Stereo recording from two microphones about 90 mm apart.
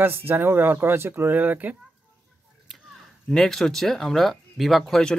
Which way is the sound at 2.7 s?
5° left (ahead or behind).